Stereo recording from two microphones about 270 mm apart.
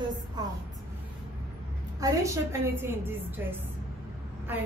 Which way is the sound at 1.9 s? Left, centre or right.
Centre.